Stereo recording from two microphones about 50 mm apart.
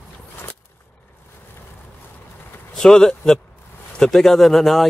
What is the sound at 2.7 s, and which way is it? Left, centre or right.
Speech, centre.